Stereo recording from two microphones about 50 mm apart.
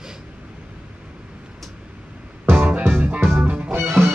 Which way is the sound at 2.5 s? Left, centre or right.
Right.